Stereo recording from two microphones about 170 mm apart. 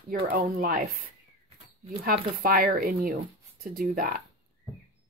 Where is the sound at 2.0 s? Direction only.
60° right (ahead or behind).